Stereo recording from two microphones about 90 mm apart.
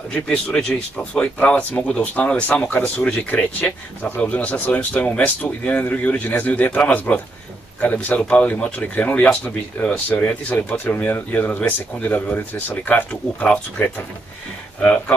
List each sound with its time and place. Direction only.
0.1 s speech: 15° left (ahead or behind)